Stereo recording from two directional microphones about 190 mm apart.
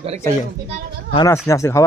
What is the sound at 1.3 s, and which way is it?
Speech, 15° left (ahead or behind).